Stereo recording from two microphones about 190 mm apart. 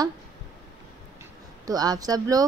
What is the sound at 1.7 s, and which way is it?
Speech, 20° right (ahead or behind).